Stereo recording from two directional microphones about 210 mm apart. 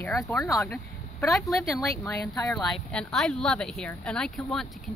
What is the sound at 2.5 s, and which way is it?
Speech, centre (ahead or behind).